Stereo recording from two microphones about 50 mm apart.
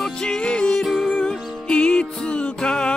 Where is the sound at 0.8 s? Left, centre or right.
Centre.